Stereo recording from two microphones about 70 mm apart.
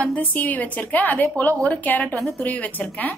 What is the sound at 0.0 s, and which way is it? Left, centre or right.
A woman's voice, left.